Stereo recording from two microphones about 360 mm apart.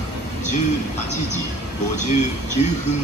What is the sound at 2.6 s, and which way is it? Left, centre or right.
Music, centre.